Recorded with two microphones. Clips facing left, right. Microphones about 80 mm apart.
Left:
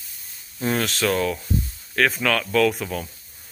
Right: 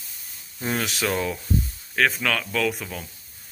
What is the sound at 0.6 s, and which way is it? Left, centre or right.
Speech, centre.